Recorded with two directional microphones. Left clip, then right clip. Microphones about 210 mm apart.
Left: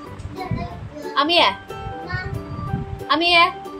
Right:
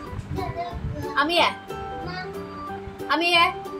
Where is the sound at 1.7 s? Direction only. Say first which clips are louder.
Left 2 dB; centre (ahead or behind).